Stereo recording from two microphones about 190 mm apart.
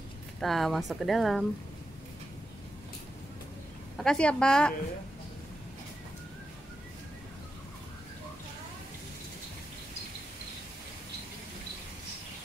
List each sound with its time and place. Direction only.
0.4 s speech: centre (ahead or behind)
4.0 s speech: 5° left (ahead or behind)